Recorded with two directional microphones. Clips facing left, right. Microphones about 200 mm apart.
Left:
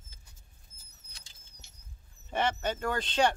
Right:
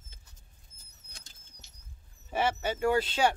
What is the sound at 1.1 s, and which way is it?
Bird flight, 50° right (ahead or behind).